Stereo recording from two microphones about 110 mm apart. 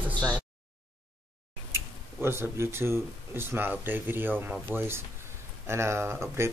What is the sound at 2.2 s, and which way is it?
Speech, 20° right (ahead or behind).